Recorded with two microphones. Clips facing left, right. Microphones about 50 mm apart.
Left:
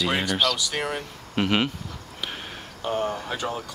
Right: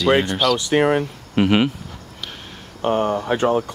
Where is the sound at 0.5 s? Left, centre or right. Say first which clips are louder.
Right 11 dB; right.